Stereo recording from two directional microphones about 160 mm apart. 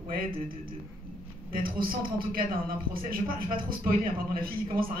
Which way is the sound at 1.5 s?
65° right (ahead or behind).